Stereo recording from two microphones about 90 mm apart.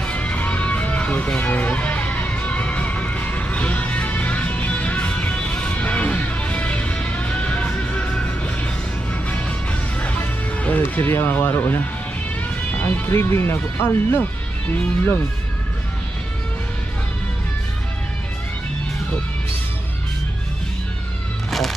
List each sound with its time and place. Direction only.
0.0 s music: 15° left (ahead or behind)
9.9 s music: 15° left (ahead or behind)
10.8 s speech: 25° left (ahead or behind)
21.5 s music: centre (ahead or behind)